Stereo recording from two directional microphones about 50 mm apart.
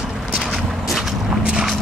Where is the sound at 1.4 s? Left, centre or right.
Centre.